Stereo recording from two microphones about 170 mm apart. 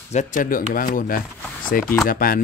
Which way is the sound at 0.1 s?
45° left (ahead or behind).